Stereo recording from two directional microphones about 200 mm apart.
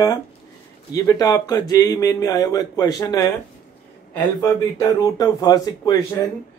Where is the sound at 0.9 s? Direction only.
15° left (ahead or behind).